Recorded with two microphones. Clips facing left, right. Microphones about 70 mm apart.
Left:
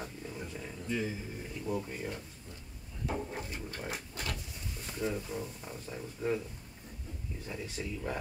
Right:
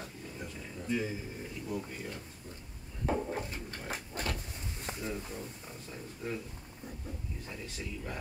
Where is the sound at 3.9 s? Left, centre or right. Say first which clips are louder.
Right 5 dB; right.